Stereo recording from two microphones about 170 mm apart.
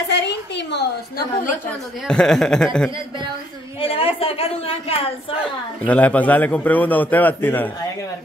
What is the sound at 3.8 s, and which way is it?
Speech, 35° left (ahead or behind).